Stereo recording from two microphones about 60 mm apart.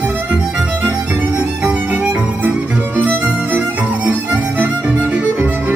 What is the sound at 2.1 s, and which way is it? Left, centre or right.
Music, right.